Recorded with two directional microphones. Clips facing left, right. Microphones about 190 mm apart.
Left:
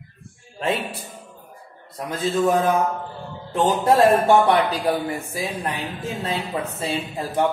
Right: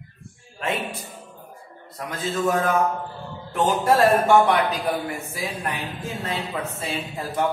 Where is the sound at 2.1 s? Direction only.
35° left (ahead or behind).